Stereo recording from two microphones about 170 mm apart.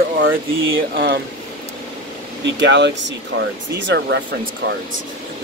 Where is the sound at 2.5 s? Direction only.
90° right.